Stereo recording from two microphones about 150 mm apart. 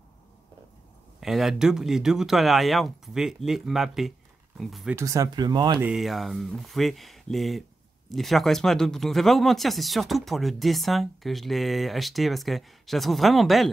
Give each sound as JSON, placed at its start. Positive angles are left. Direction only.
{"t": 1.2, "sound": "speech", "side_deg": 0}
{"t": 4.9, "sound": "speech", "side_deg": -20}
{"t": 5.8, "sound": "speech", "side_deg": -5}